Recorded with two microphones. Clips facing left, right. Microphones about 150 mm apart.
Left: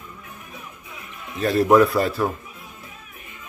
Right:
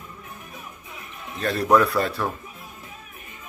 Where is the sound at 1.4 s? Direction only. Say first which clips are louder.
Left 4 dB; centre (ahead or behind).